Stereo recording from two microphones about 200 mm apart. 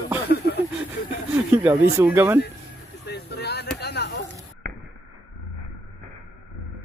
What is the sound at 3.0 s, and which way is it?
Speech, 55° left (ahead or behind).